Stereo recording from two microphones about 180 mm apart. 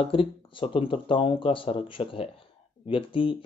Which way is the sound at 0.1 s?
30° left (ahead or behind).